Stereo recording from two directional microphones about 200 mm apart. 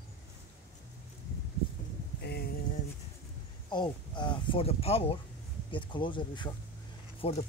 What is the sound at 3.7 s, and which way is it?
Speech, 20° left (ahead or behind).